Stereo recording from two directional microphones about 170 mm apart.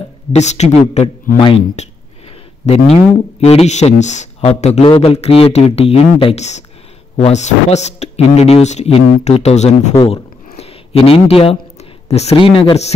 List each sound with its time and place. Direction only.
0.3 s a man's voice: 40° left (ahead or behind)